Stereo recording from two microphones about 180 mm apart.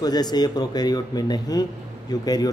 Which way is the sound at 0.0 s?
20° left (ahead or behind).